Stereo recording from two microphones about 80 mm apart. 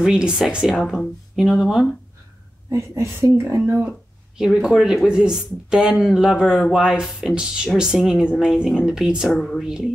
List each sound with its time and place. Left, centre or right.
0.0 s speech: centre
2.7 s speech: right
4.4 s speech: centre
9.3 s speech: centre
9.6 s speech: centre